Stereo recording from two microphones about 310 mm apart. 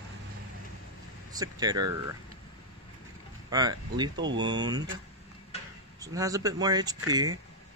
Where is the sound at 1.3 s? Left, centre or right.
Centre.